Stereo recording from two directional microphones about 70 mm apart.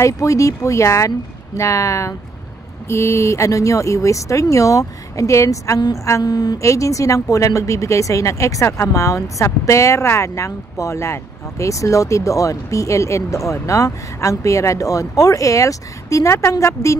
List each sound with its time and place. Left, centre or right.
0.0 s speech: left
6.2 s speech: left
6.6 s speech: left